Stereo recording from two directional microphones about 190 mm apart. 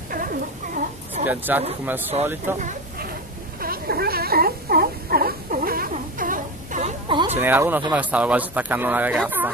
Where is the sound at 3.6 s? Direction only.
50° right (ahead or behind).